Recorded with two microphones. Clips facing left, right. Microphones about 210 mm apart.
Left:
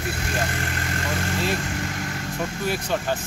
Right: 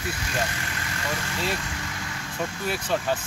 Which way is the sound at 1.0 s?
50° left (ahead or behind).